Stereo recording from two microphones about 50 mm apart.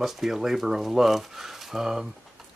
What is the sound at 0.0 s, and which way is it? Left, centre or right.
Speech, centre.